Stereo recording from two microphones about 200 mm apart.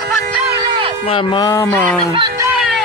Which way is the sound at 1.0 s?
25° left (ahead or behind).